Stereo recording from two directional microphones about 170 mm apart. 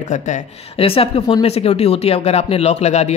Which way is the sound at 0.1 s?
45° left (ahead or behind).